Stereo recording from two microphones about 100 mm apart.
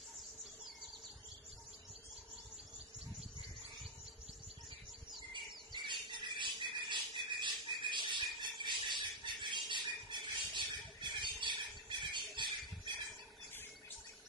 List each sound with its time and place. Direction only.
5.1 s squawk: 50° right (ahead or behind)
10.1 s a sound: 50° right (ahead or behind)
10.5 s squawk: 50° right (ahead or behind)